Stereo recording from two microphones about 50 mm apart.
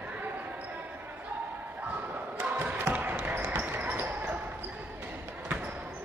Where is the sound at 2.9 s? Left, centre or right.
Right.